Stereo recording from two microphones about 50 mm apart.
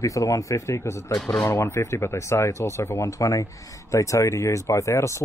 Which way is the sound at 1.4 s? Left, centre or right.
Left.